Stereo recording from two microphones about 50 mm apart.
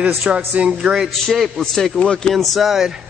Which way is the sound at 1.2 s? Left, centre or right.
Centre.